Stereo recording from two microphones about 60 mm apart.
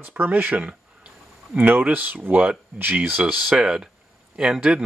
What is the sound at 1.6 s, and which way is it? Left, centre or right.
Speech, right.